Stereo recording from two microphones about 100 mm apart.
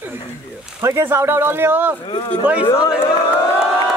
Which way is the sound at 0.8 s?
25° right (ahead or behind).